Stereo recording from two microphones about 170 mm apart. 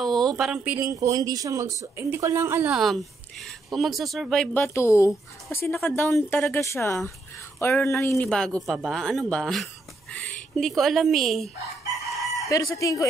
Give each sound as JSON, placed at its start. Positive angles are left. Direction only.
{"t": 0.0, "sound": "a sound", "side_deg": 0}
{"t": 0.4, "sound": "speech", "side_deg": -5}
{"t": 0.7, "sound": "speech", "side_deg": -20}
{"t": 2.8, "sound": "speech", "side_deg": 0}
{"t": 4.6, "sound": "speech", "side_deg": 15}
{"t": 8.3, "sound": "speech", "side_deg": 5}
{"t": 10.1, "sound": "a sound", "side_deg": 5}
{"t": 10.8, "sound": "speech", "side_deg": 0}
{"t": 12.1, "sound": "chicken", "side_deg": 0}
{"t": 12.4, "sound": "speech", "side_deg": 20}